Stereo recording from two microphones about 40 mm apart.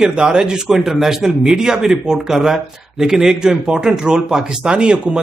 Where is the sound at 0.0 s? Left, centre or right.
Right.